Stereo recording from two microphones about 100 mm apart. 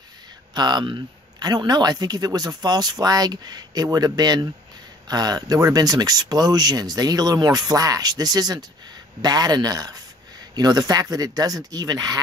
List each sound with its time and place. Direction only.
0.6 s speech: 45° right (ahead or behind)